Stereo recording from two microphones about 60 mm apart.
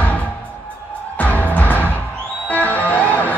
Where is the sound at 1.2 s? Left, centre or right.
Left.